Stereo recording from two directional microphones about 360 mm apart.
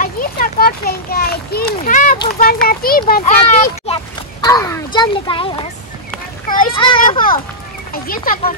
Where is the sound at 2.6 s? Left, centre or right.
Left.